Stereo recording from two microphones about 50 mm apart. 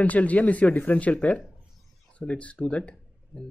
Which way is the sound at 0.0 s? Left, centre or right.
Left.